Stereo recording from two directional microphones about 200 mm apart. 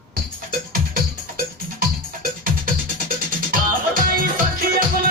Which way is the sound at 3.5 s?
45° right (ahead or behind).